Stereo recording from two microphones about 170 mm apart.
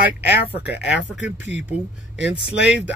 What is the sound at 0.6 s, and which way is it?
Speech, 10° right (ahead or behind).